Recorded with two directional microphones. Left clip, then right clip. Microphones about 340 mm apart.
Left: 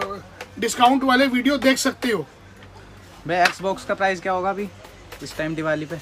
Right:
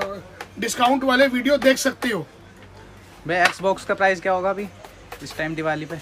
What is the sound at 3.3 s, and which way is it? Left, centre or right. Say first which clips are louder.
Speech: right 1 dB; centre.